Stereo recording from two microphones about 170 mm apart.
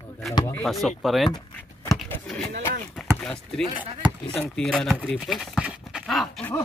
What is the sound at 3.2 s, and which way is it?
Speech, 5° left (ahead or behind).